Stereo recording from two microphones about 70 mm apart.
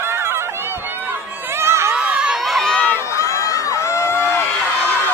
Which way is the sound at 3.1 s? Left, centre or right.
Left.